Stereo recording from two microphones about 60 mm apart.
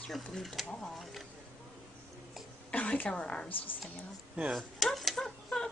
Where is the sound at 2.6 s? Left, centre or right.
Centre.